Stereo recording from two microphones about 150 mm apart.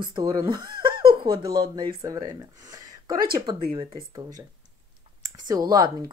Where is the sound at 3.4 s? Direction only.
25° right (ahead or behind).